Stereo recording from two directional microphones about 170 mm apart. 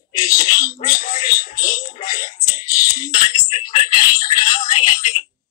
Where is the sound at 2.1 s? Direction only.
25° left (ahead or behind).